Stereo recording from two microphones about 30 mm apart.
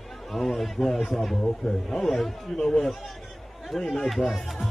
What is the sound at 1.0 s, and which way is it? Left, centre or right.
Speech, centre.